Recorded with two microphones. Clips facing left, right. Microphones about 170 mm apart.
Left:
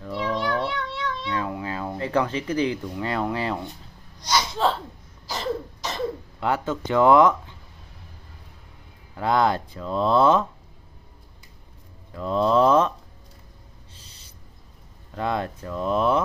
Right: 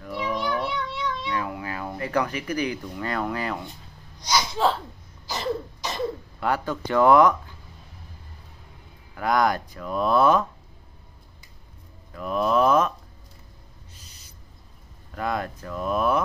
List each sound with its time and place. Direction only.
0.7 s cat: centre (ahead or behind)
1.3 s speech: 25° left (ahead or behind)
4.3 s cough: centre (ahead or behind)
6.4 s speech: 20° left (ahead or behind)
9.1 s speech: 25° left (ahead or behind)
12.1 s speech: 25° left (ahead or behind)
13.9 s owl: 30° left (ahead or behind)
15.1 s speech: 25° left (ahead or behind)